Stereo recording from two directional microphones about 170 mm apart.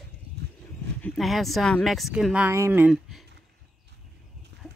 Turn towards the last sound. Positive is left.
turn(degrees=0)  # may be behind; listen again after turning